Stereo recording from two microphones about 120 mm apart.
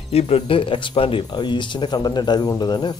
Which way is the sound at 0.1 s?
60° left (ahead or behind).